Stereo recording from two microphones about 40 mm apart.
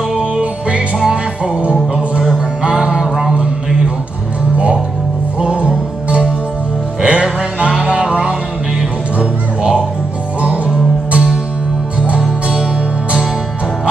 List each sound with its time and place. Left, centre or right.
0.2 s music: right
5.4 s music: right